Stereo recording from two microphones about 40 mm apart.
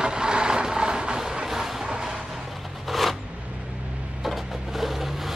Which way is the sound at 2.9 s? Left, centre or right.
Centre.